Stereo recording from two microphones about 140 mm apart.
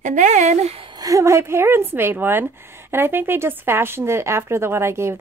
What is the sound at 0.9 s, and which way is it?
A woman's voice, 25° right (ahead or behind).